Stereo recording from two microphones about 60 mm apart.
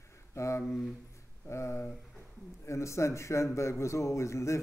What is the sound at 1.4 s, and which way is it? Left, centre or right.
A man's voice, left.